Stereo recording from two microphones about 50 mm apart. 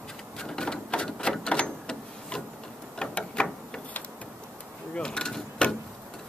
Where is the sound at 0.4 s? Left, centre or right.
Centre.